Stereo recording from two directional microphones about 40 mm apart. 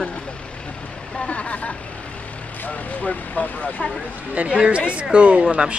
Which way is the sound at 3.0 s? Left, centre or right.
Left.